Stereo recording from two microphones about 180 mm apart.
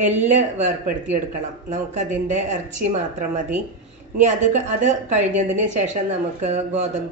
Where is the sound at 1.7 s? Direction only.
40° right (ahead or behind).